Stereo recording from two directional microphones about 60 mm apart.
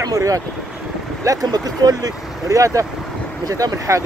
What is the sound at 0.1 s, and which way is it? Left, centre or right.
Speech, right.